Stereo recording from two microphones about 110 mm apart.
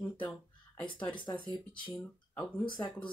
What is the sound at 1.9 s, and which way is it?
Speech, 15° left (ahead or behind).